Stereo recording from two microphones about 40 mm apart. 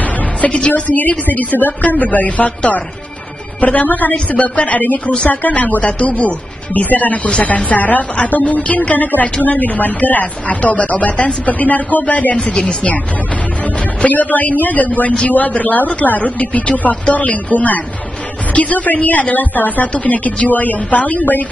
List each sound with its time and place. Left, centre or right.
0.0 s a woman's voice: left
8.4 s a woman's voice: left
10.5 s a woman's voice: left
12.4 s a woman's voice: left
14.0 s a woman's voice: left
15.0 s a woman's voice: left